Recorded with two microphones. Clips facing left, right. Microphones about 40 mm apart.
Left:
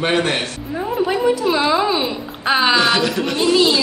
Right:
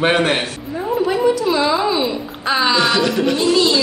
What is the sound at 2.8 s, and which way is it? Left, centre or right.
Speech, centre.